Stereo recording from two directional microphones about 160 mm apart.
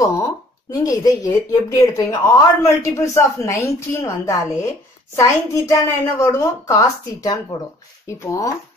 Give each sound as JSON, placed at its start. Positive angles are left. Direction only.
{"t": 0.0, "sound": "speech", "side_deg": 20}